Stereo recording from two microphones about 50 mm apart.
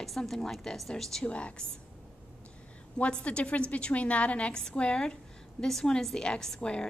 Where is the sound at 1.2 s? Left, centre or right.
Left.